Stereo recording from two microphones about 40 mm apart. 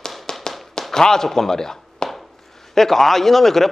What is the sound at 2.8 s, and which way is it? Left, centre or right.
Speech, centre.